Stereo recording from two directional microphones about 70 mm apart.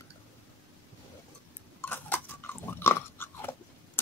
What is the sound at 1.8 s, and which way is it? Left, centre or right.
Crunch, left.